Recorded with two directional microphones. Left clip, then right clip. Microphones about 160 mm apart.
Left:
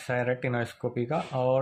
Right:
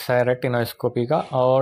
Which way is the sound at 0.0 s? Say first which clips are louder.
Right 9 dB; 40° right (ahead or behind).